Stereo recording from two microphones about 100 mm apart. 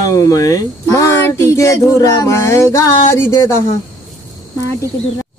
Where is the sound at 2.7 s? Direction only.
30° left (ahead or behind).